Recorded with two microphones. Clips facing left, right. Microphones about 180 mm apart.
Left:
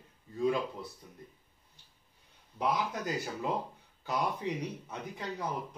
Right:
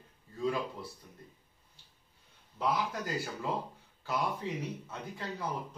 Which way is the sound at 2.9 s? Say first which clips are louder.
Left 1 dB; 20° left (ahead or behind).